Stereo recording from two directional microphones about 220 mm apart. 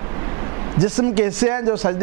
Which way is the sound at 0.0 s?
20° right (ahead or behind).